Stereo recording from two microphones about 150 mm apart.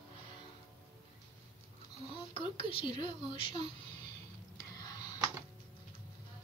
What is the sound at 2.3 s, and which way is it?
Speech, 35° left (ahead or behind).